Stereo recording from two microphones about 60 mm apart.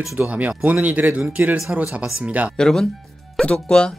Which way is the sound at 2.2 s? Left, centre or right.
Right.